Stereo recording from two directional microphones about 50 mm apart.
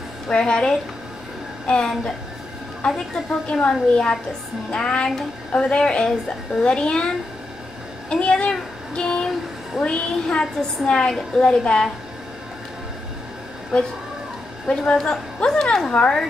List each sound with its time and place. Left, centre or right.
0.3 s a woman's voice: centre
8.1 s a sound: left
9.8 s a woman's voice: centre
15.0 s a woman's voice: centre